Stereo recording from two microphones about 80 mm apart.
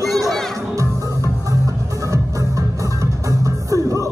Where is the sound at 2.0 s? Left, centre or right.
Right.